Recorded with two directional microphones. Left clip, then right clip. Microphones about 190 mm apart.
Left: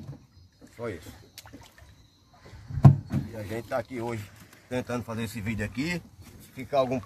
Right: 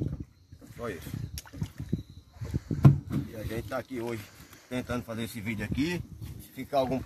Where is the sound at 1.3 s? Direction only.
40° right (ahead or behind).